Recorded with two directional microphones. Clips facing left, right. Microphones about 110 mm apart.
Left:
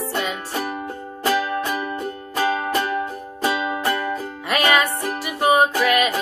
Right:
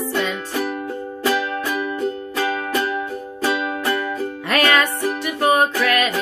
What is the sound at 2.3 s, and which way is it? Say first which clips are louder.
Music: left 3 dB; 30° left (ahead or behind).